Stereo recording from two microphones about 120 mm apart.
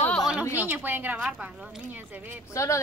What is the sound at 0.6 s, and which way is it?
Speech, 15° right (ahead or behind).